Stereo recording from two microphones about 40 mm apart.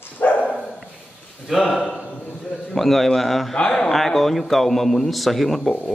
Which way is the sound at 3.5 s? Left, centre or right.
Centre.